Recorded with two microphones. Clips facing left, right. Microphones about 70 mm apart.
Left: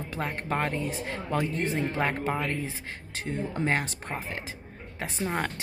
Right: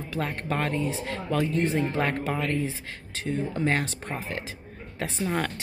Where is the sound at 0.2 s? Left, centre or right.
Centre.